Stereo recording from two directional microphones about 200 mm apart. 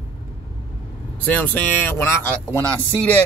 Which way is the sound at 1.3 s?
10° left (ahead or behind).